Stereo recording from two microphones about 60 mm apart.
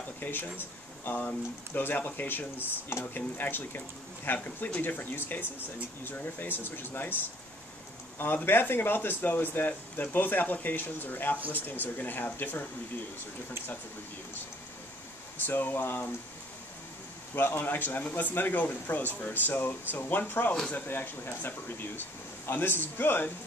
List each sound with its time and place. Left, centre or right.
0.2 s speech: left
8.5 s speech: left
15.4 s speech: left
17.4 s speech: left